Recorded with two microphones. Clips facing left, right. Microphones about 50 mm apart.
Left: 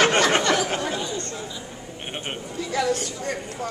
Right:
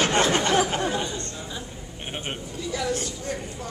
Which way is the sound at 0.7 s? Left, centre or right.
Right.